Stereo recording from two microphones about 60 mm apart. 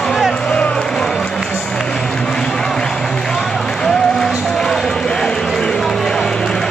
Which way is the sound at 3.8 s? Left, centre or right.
Centre.